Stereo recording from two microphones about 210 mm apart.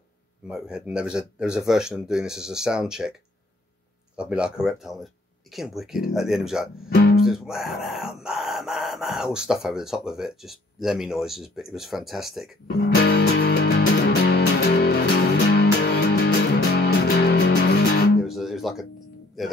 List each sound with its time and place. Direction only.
0.5 s speech: 5° right (ahead or behind)
4.2 s speech: 5° right (ahead or behind)
6.9 s guitar: 50° left (ahead or behind)
7.2 s speech: centre (ahead or behind)
12.6 s music: 50° left (ahead or behind)
18.2 s guitar: centre (ahead or behind)
19.4 s speech: centre (ahead or behind)